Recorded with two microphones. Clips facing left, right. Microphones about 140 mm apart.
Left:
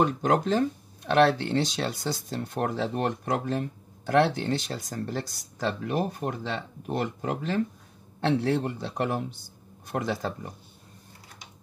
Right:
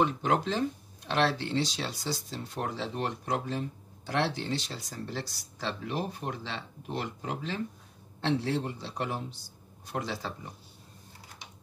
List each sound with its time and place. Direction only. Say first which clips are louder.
0.0 s a man's voice: left 3 dB; 45° left (ahead or behind)